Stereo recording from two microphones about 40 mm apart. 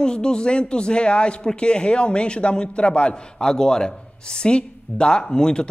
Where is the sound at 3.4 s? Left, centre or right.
Centre.